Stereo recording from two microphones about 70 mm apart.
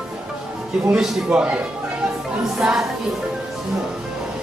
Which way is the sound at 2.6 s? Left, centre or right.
Centre.